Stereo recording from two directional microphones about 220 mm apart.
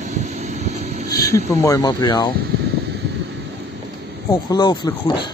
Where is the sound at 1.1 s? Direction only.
15° left (ahead or behind).